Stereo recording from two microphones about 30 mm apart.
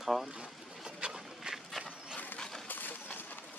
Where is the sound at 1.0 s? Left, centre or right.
Right.